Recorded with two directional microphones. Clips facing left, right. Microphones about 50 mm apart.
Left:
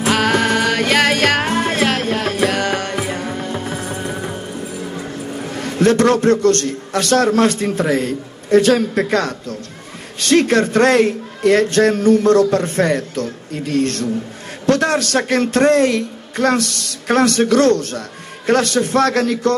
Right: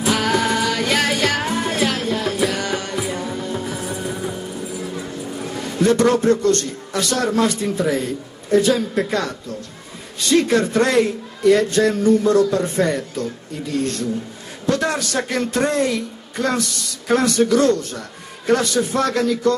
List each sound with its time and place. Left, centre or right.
0.0 s music: left
5.6 s a man's voice: left